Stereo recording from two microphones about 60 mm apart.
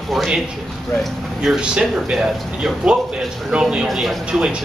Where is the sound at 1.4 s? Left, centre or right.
Centre.